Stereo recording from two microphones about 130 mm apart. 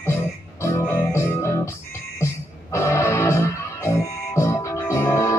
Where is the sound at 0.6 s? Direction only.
20° left (ahead or behind).